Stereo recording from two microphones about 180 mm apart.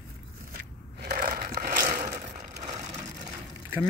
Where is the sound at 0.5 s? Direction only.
55° right (ahead or behind); by 3.2 s 40° right (ahead or behind).